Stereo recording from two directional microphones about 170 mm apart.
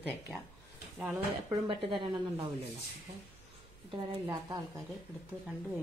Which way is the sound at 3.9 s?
25° right (ahead or behind).